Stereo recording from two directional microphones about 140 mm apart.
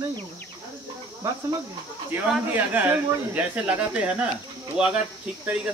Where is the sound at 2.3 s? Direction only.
15° right (ahead or behind).